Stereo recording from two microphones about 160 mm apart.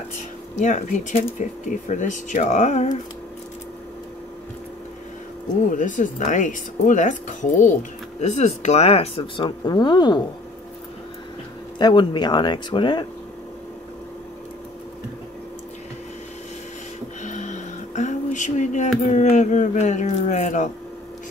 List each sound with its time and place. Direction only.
0.6 s speech: 50° left (ahead or behind)
5.7 s speech: 55° left (ahead or behind); by 10.2 s 30° left (ahead or behind)
11.8 s speech: 30° left (ahead or behind)
17.2 s a sound: 50° left (ahead or behind)